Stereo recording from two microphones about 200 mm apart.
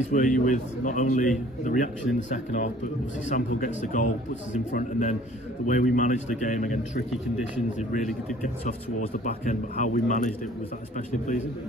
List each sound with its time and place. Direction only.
0.1 s speech: 40° left (ahead or behind)
8.4 s speech: 40° left (ahead or behind)